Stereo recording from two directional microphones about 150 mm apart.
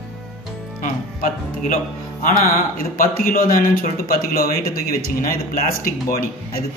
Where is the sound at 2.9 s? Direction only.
70° left (ahead or behind).